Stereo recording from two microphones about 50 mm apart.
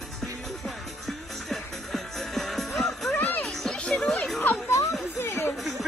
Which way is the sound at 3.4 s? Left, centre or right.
Centre.